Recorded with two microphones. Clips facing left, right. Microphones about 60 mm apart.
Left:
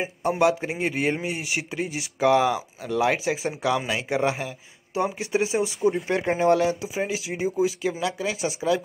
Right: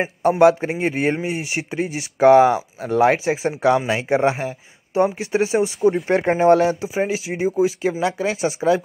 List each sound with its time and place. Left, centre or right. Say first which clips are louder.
0.4 s speech: right 7 dB; right
0.9 s speech: right 4 dB; right
1.9 s speech: right 8 dB; right